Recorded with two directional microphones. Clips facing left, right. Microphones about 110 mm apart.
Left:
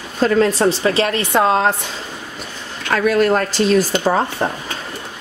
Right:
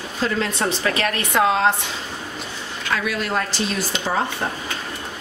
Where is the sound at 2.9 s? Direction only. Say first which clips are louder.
Left 9 dB; 50° left (ahead or behind).